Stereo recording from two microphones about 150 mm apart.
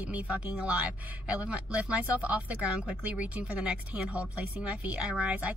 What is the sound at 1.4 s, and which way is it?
Speech, 10° right (ahead or behind).